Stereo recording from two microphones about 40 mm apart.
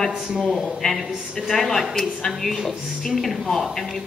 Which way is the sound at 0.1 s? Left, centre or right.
Centre.